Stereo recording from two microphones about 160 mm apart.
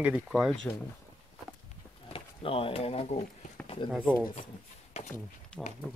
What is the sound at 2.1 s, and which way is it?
Speech, 35° left (ahead or behind).